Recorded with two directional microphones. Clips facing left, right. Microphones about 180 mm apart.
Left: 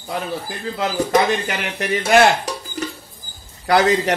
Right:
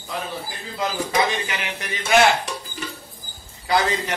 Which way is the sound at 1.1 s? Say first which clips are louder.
Left 6 dB; 50° left (ahead or behind).